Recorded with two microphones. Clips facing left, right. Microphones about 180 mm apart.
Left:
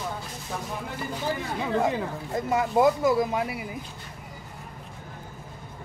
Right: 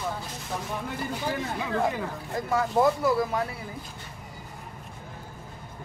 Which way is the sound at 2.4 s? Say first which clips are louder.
Left 1 dB; 20° left (ahead or behind).